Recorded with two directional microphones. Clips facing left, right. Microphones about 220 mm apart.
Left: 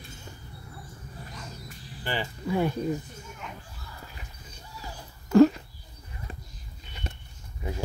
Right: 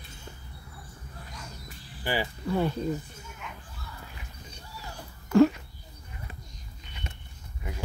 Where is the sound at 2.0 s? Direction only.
10° right (ahead or behind).